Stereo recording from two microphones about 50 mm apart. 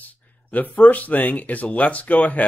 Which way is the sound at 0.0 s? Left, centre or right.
Left.